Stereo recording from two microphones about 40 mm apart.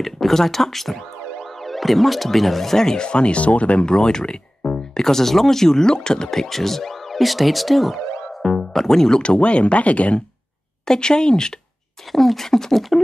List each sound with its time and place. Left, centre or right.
0.0 s speech: centre; by 3.9 s left
3.9 s speech: centre
5.0 s speech: centre
9.2 s speech: left
10.9 s speech: centre
12.1 s speech: centre